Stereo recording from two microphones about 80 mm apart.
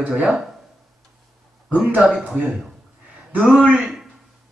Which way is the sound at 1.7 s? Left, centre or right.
Centre.